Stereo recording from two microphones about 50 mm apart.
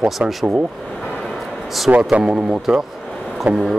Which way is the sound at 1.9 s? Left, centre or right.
Right.